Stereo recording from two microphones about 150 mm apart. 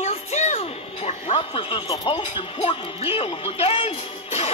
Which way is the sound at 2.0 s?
35° left (ahead or behind).